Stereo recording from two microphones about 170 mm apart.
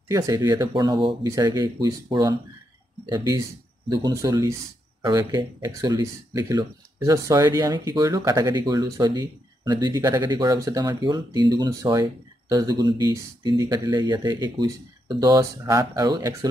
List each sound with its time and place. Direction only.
0.1 s speech: 20° right (ahead or behind)